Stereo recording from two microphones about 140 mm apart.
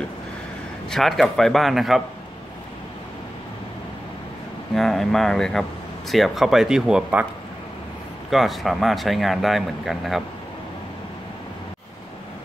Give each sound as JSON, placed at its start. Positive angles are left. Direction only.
{"t": 0.8, "sound": "speech", "side_deg": 0}
{"t": 4.7, "sound": "speech", "side_deg": 0}
{"t": 8.3, "sound": "speech", "side_deg": 0}